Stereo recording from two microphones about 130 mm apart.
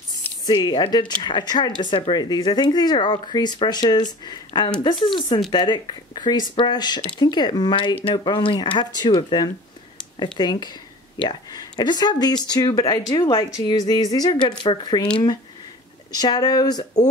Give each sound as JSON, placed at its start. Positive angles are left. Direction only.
{"t": 0.1, "sound": "speech", "side_deg": 35}
{"t": 16.1, "sound": "speech", "side_deg": 30}